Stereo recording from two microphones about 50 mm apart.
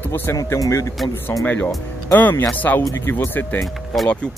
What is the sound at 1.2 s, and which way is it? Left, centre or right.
Speech, left.